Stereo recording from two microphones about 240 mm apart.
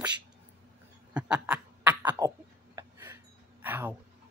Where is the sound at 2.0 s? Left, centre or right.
Centre.